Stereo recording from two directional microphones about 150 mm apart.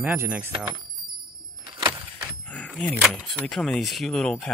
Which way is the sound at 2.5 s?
10° left (ahead or behind).